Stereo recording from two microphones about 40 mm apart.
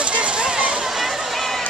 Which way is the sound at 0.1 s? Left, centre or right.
Right.